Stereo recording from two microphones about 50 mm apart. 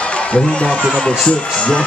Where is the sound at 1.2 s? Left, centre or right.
Left.